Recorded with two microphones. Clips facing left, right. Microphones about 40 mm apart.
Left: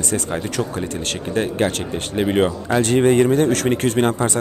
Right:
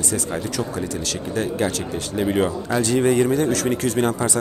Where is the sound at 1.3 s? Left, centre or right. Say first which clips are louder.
Left 3 dB; left.